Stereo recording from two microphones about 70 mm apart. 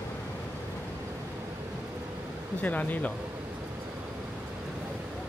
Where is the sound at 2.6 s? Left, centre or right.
Left.